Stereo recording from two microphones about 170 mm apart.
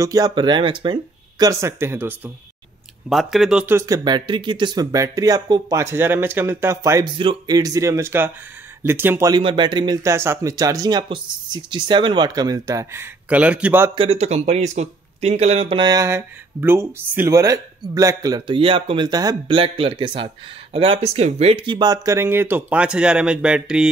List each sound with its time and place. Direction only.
0.0 s speech: 20° right (ahead or behind)
1.4 s speech: 15° right (ahead or behind)
3.1 s speech: centre (ahead or behind)
3.7 s speech: 20° right (ahead or behind)
9.3 s speech: 30° right (ahead or behind); by 13.9 s 10° right (ahead or behind)
13.9 s speech: 35° right (ahead or behind); by 23.9 s 5° right (ahead or behind)